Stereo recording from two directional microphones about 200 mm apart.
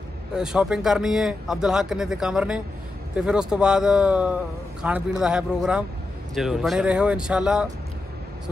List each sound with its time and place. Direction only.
0.4 s a man's voice: 5° right (ahead or behind)